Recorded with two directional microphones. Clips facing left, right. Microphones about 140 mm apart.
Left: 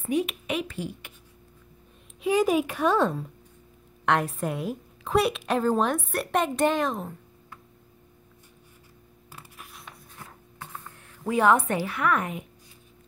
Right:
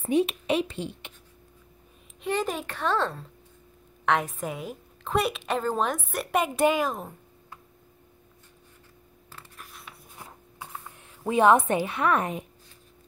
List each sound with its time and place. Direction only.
0.0 s a woman's voice: 30° right (ahead or behind)
2.2 s a woman's voice: 10° left (ahead or behind)
4.0 s a woman's voice: centre (ahead or behind)
9.3 s a sound: 5° left (ahead or behind)
10.1 s writing: 10° right (ahead or behind)
11.2 s a woman's voice: 20° right (ahead or behind)